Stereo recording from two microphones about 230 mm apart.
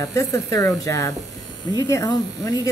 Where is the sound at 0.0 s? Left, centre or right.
Centre.